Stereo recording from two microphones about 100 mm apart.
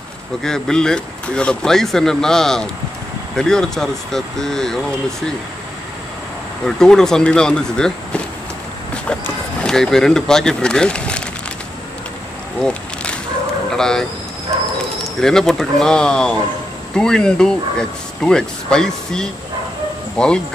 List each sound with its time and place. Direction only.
0.4 s speech: 5° left (ahead or behind)
6.6 s speech: 5° left (ahead or behind)
13.7 s speech: 5° left (ahead or behind)
15.1 s speech: 5° left (ahead or behind)